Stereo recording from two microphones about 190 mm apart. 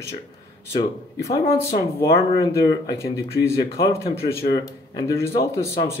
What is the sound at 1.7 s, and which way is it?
Speech, 20° left (ahead or behind).